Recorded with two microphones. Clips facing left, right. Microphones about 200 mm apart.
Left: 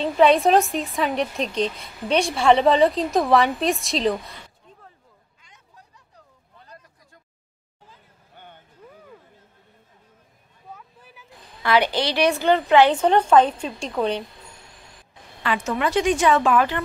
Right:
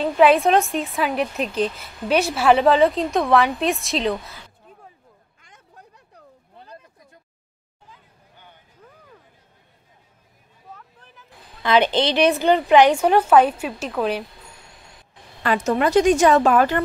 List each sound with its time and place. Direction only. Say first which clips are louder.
0.0 s a woman's voice: right 1 dB; 5° right (ahead or behind)
5.4 s a sound: right 5 dB; 55° right (ahead or behind)
10.8 s vehicle: left 1 dB; 10° left (ahead or behind)
11.6 s a woman's voice: right 3 dB; 20° right (ahead or behind); by 14.2 s 5° right (ahead or behind)
15.4 s a woman's voice: right 4 dB; 40° right (ahead or behind)